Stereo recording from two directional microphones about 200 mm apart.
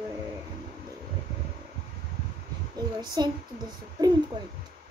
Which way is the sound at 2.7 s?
20° right (ahead or behind).